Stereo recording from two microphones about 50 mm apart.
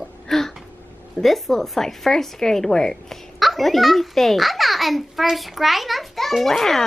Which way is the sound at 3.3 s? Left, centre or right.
Centre.